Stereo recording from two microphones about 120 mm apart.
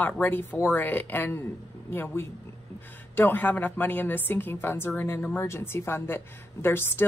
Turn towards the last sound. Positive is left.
turn(degrees=20)  # may be behind; listen again after turning